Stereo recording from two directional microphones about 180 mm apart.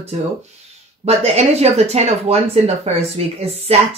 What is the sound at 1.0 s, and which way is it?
Speech, 35° right (ahead or behind).